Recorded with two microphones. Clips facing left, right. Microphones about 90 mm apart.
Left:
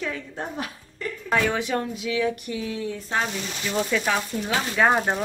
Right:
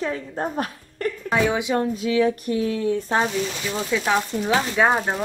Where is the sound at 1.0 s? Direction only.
60° right (ahead or behind).